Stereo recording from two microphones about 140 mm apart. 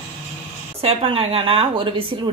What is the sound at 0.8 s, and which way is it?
A woman's voice, 45° right (ahead or behind).